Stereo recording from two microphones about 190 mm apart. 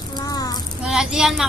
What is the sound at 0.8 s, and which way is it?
Speech, 5° right (ahead or behind).